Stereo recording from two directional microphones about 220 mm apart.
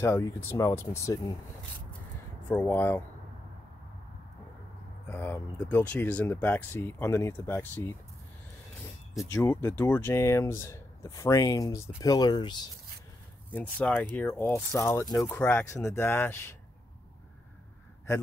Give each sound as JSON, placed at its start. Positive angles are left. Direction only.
{"t": 0.0, "sound": "speech", "side_deg": 10}
{"t": 2.4, "sound": "speech", "side_deg": 10}
{"t": 5.0, "sound": "speech", "side_deg": 10}
{"t": 9.2, "sound": "speech", "side_deg": 10}
{"t": 13.5, "sound": "speech", "side_deg": 10}